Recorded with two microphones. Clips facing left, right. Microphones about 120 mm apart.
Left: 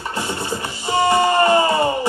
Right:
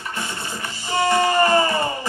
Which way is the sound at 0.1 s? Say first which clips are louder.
Left 6 dB; 30° left (ahead or behind).